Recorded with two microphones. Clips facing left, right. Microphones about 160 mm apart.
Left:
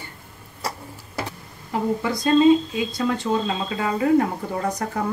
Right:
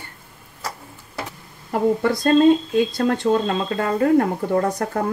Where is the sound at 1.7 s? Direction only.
50° right (ahead or behind).